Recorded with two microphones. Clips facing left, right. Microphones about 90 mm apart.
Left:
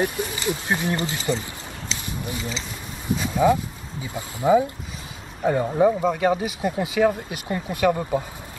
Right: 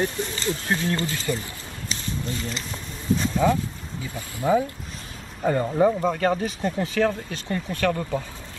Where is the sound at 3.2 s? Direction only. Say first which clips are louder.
Left 4 dB; 10° left (ahead or behind).